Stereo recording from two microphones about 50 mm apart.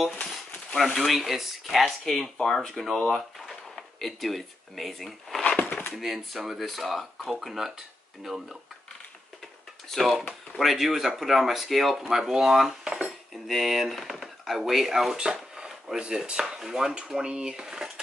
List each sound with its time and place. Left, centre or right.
0.7 s speech: centre
5.4 s a sound: left
5.9 s speech: centre
9.8 s speech: centre